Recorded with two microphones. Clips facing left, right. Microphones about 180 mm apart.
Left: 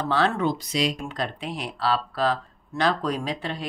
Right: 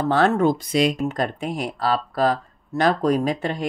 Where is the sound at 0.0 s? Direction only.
45° right (ahead or behind).